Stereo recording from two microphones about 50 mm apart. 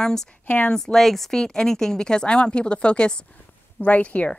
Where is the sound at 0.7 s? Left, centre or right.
Centre.